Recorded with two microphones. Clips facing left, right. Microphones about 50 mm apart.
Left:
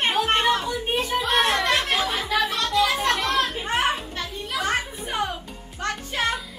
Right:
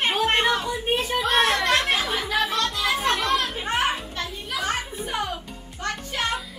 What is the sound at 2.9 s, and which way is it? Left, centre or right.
Children playing, centre.